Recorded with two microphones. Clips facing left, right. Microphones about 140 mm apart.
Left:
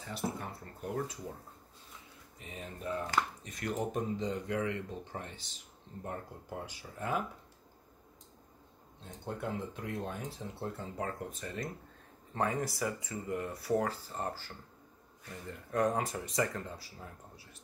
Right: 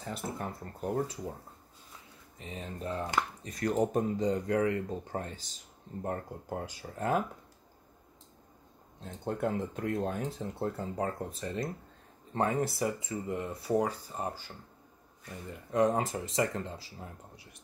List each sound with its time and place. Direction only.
0.0 s speech: 45° right (ahead or behind)
2.3 s speech: 30° right (ahead or behind)
3.4 s speech: 35° right (ahead or behind)
9.0 s speech: 45° right (ahead or behind)
11.0 s speech: 35° right (ahead or behind); by 14.5 s 15° right (ahead or behind)
15.5 s speech: 20° right (ahead or behind)